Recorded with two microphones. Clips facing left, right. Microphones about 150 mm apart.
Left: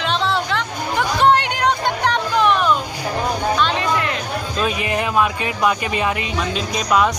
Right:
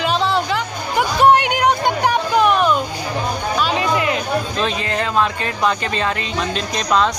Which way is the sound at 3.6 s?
5° right (ahead or behind).